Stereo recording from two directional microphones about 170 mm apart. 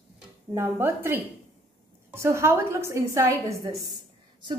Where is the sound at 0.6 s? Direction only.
15° right (ahead or behind).